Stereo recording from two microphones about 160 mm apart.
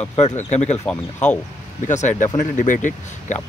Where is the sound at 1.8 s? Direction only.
50° left (ahead or behind).